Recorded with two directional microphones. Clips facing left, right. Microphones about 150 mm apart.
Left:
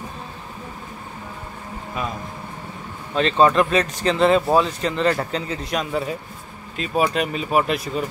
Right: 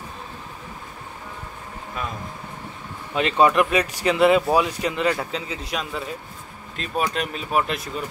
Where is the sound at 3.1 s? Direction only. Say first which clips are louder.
Left 2 dB; 10° right (ahead or behind).